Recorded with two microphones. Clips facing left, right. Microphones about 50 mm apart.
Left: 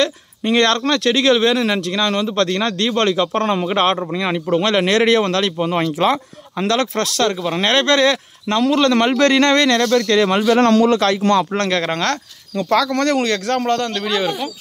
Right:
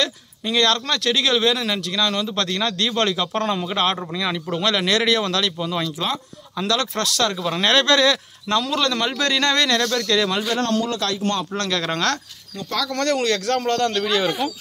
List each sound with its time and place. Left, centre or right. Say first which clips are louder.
0.4 s speech: left 4 dB; left
7.2 s speech: left 3 dB; left
8.8 s speech: left 8 dB; left
9.8 s speech: left 6 dB; left
10.4 s a man's voice: left 9 dB; left
11.0 s speech: left 8 dB; left
11.7 s speech: even; left
13.6 s a man's voice: left 1 dB; centre